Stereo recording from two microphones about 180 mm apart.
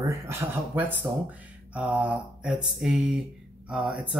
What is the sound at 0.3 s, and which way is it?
Speech, 10° right (ahead or behind).